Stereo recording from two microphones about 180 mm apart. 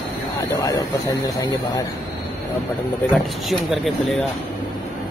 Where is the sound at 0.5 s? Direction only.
20° left (ahead or behind).